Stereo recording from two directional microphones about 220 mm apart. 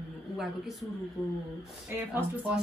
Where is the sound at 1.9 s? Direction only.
10° right (ahead or behind).